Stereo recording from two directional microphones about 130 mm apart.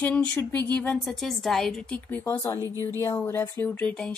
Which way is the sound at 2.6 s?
25° right (ahead or behind).